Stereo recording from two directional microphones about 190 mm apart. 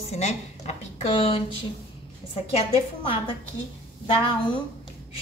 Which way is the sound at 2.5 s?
25° left (ahead or behind).